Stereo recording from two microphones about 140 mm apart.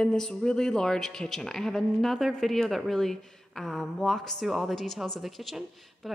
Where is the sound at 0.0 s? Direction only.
5° left (ahead or behind).